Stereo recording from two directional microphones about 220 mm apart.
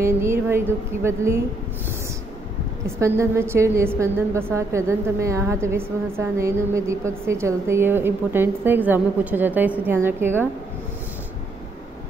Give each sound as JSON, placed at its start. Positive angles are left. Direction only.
{"t": 0.0, "sound": "a woman's voice", "side_deg": -10}
{"t": 3.0, "sound": "a woman's voice", "side_deg": -10}